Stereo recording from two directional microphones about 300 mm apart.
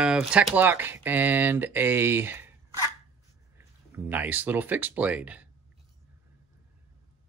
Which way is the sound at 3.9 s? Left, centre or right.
Centre.